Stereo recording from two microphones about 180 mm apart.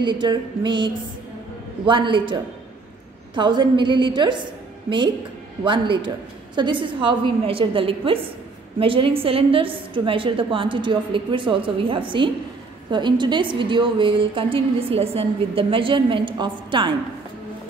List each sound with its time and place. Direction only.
0.0 s a woman's voice: 25° right (ahead or behind)